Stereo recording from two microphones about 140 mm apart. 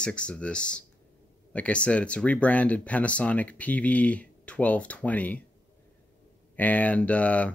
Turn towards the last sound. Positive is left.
turn(degrees=10)  # may be behind; listen again after turning